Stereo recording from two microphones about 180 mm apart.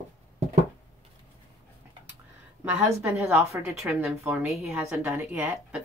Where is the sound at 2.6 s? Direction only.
10° right (ahead or behind).